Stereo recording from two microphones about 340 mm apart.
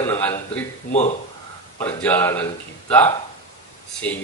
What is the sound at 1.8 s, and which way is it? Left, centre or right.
Speech, centre.